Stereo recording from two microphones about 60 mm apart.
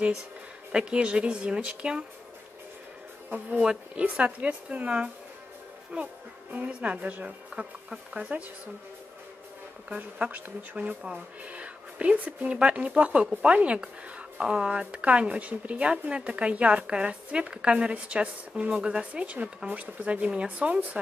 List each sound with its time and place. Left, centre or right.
0.7 s speech: centre
3.6 s speech: right
9.8 s speech: right